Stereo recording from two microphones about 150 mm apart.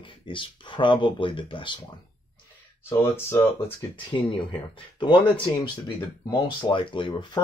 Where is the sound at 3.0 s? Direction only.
15° left (ahead or behind).